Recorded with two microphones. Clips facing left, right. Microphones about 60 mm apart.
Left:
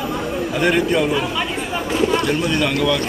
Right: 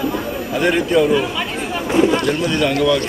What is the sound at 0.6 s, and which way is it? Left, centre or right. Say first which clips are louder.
Speech: right 2 dB; centre.